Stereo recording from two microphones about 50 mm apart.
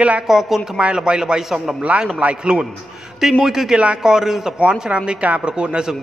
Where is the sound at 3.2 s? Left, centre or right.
Centre.